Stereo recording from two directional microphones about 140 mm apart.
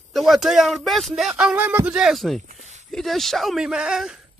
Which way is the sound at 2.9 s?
Centre (ahead or behind).